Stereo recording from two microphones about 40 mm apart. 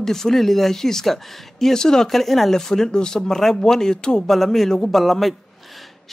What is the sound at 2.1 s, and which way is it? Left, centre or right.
Speech, centre.